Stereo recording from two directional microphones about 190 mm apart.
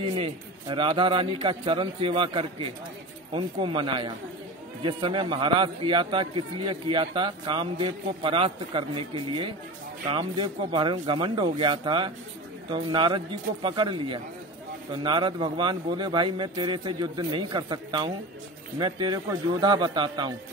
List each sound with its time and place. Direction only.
0.0 s a man's voice: 25° right (ahead or behind)